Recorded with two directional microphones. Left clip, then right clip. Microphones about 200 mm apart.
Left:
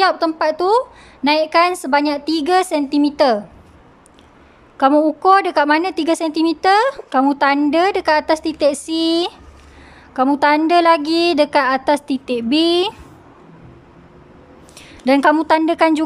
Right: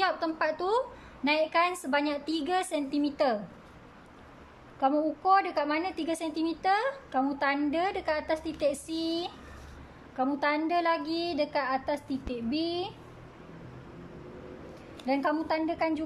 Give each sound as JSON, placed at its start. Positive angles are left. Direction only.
{"t": 0.0, "sound": "a woman's voice", "side_deg": 30}
{"t": 4.7, "sound": "a woman's voice", "side_deg": 35}
{"t": 15.0, "sound": "a woman's voice", "side_deg": 40}